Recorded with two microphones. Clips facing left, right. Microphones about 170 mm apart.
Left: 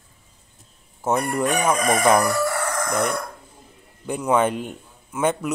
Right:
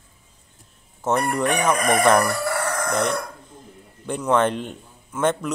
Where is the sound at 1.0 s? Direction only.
10° left (ahead or behind).